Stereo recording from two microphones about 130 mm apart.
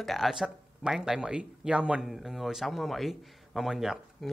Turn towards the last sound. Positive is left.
turn(degrees=-5)  # may be behind; listen again after turning